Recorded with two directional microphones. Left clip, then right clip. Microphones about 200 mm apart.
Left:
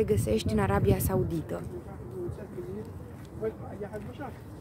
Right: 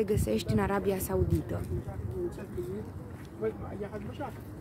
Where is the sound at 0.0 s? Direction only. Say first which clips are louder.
Left 3 dB; 15° left (ahead or behind).